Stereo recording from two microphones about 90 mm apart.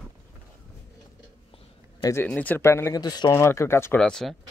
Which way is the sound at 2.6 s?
30° left (ahead or behind).